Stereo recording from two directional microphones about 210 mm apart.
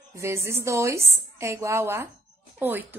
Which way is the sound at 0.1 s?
15° right (ahead or behind).